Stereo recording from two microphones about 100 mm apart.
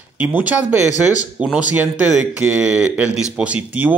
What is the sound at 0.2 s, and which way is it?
Speech, 15° right (ahead or behind).